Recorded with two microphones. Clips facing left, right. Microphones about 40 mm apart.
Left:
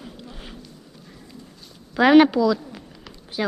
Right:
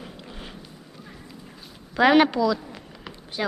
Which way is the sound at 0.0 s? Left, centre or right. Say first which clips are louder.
Even; centre.